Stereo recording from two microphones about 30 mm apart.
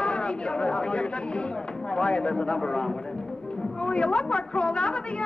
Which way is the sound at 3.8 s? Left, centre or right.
Left.